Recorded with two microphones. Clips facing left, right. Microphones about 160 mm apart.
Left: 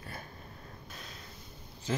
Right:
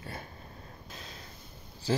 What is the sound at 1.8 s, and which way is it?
Speech, 35° right (ahead or behind).